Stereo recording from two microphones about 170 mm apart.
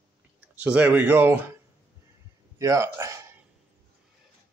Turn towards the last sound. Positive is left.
turn(degrees=-15)  # may be behind; listen again after turning